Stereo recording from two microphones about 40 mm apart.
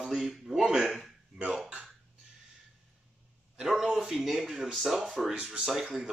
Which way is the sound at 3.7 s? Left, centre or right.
Centre.